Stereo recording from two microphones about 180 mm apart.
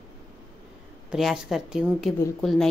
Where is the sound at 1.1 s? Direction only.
Centre (ahead or behind).